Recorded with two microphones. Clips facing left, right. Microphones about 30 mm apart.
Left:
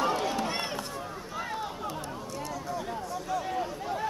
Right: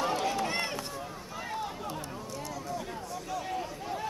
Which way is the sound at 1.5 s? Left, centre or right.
Centre.